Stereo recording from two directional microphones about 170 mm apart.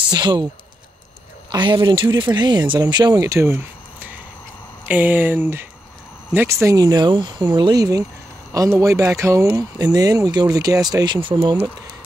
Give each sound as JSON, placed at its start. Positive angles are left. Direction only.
{"t": 0.0, "sound": "speech", "side_deg": -25}
{"t": 1.5, "sound": "speech", "side_deg": -30}